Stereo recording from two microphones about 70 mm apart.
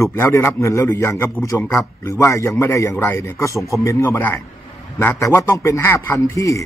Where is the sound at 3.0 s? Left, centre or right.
Left.